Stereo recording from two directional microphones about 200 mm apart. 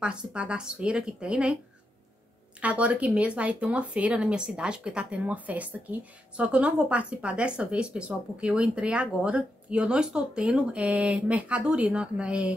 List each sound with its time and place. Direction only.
0.0 s speech: 5° right (ahead or behind)
2.6 s speech: 5° right (ahead or behind)